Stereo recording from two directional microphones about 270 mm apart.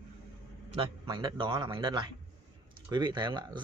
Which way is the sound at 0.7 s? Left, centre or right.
Centre.